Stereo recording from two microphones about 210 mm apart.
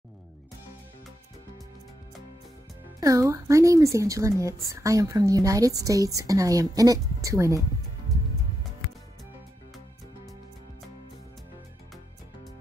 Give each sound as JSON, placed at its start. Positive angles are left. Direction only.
{"t": 3.0, "sound": "a woman's voice", "side_deg": -15}
{"t": 8.1, "sound": "music", "side_deg": 0}